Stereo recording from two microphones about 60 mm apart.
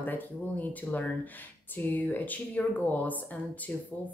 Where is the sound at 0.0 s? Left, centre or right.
Left.